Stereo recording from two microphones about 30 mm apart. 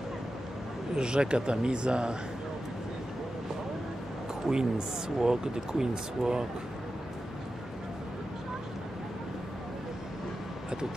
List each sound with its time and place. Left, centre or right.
0.9 s speech: right
4.5 s speech: right